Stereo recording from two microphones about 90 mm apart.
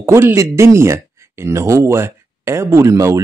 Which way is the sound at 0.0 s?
30° right (ahead or behind).